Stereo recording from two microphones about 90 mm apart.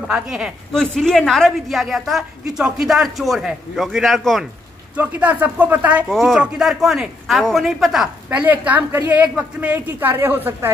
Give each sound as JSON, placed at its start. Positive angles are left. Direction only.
{"t": 0.1, "sound": "speech", "side_deg": -5}
{"t": 0.7, "sound": "a woman's voice", "side_deg": 5}
{"t": 4.9, "sound": "speech", "side_deg": -15}
{"t": 6.0, "sound": "a woman's voice", "side_deg": 0}
{"t": 8.3, "sound": "a woman's voice", "side_deg": -15}